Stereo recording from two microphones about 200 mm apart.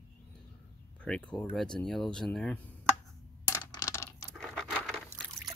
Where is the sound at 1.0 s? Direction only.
5° left (ahead or behind).